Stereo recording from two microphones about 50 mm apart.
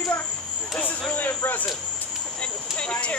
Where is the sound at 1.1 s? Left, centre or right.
Left.